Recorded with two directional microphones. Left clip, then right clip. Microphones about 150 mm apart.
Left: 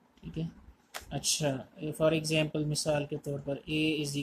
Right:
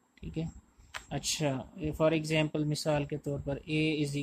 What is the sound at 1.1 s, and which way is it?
Speech, 50° right (ahead or behind).